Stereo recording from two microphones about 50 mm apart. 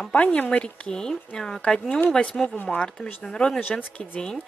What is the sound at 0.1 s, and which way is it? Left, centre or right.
Speech, left.